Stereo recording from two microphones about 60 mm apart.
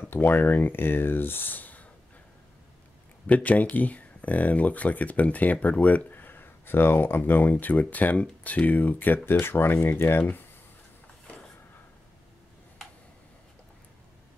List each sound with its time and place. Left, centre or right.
0.1 s speech: left
3.3 s speech: left